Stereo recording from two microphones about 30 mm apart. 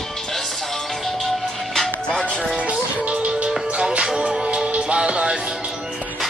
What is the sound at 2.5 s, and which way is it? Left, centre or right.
Music, right.